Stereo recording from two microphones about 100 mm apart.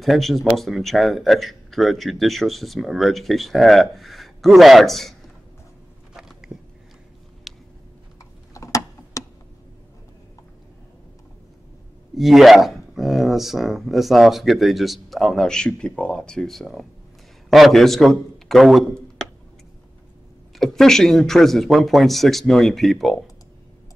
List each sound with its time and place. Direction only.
0.0 s speech: centre (ahead or behind)
6.1 s biting: 5° right (ahead or behind)
7.5 s a sound: centre (ahead or behind)
8.2 s a sound: 35° left (ahead or behind)
12.2 s speech: centre (ahead or behind)
20.5 s speech: 5° left (ahead or behind)